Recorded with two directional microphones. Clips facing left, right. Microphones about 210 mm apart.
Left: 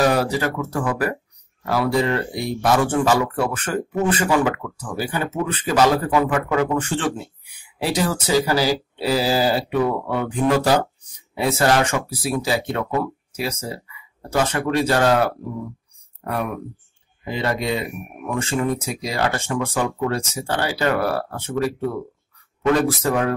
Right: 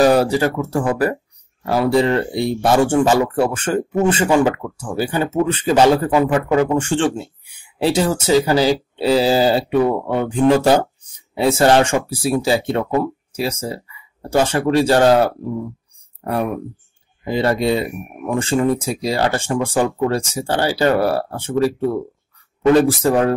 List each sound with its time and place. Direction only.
0.0 s speech: 30° right (ahead or behind)
17.2 s speech: 35° right (ahead or behind)